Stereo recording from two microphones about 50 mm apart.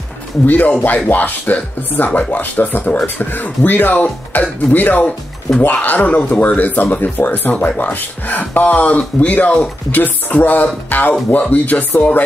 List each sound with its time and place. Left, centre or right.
0.5 s speech: left